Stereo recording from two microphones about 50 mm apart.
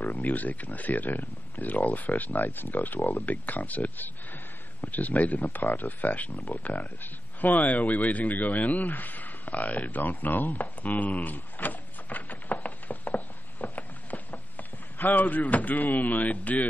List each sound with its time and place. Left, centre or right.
0.0 s speech: left